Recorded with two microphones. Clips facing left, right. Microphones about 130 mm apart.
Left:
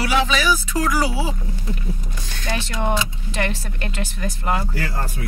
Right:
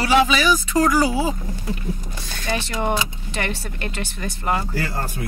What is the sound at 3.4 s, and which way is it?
Speech, centre (ahead or behind).